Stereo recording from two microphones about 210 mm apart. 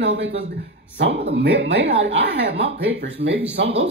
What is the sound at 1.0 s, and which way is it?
Speech, 50° right (ahead or behind).